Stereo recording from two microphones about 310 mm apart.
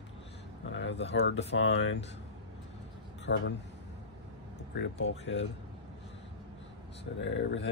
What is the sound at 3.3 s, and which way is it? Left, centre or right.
Speech, left.